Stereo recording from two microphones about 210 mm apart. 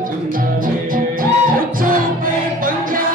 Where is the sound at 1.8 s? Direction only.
40° right (ahead or behind).